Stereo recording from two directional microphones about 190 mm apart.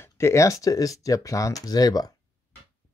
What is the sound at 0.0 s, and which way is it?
Speech, 15° left (ahead or behind).